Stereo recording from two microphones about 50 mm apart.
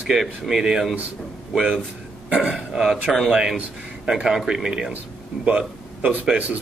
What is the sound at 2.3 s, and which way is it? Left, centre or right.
Speech, right.